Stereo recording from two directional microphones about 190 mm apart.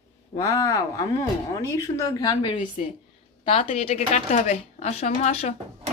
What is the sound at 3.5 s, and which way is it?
Speech, 30° left (ahead or behind).